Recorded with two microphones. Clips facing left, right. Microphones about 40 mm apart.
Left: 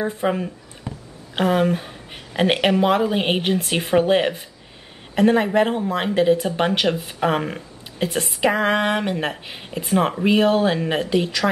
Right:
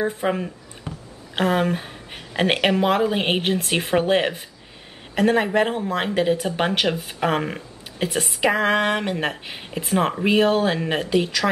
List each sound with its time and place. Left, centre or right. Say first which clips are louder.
0.0 s speech: left 1 dB; centre
0.9 s a sound: left 1 dB; right
1.3 s speech: left 2 dB; centre